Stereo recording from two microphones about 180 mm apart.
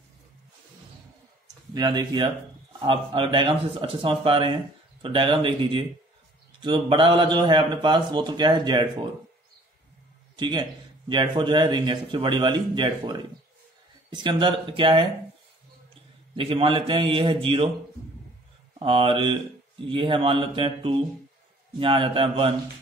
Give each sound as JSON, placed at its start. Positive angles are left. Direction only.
{"t": 1.7, "sound": "a man's voice", "side_deg": -20}
{"t": 10.3, "sound": "a man's voice", "side_deg": -25}
{"t": 16.3, "sound": "a man's voice", "side_deg": -30}
{"t": 18.8, "sound": "a man's voice", "side_deg": -30}